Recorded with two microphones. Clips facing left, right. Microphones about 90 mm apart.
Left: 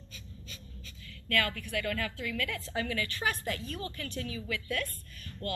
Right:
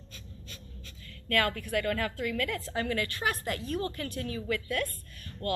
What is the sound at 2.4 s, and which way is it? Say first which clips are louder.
A woman's voice: right 3 dB; 45° right (ahead or behind).